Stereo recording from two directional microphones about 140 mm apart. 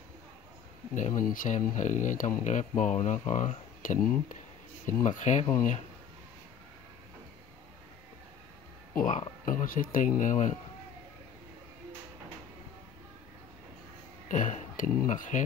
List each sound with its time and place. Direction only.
0.9 s speech: 65° left (ahead or behind)
8.9 s speech: 70° left (ahead or behind)
14.3 s speech: 65° left (ahead or behind)